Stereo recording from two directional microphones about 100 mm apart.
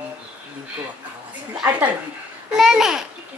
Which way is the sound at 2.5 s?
5° right (ahead or behind).